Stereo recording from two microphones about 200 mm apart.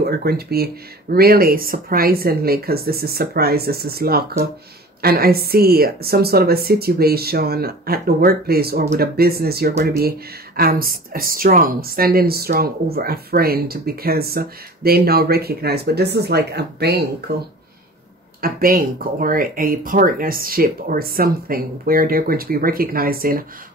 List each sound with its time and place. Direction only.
0.0 s speech: 50° right (ahead or behind)